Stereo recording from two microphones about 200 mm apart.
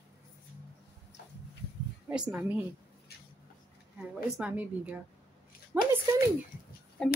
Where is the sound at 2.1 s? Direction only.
5° right (ahead or behind).